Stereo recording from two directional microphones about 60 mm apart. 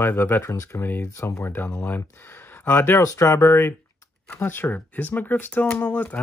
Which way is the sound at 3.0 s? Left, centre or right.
Left.